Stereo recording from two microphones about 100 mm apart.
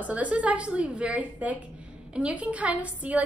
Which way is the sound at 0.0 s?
15° right (ahead or behind).